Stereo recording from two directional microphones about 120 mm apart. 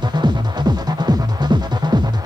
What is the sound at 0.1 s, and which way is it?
Music, 40° right (ahead or behind).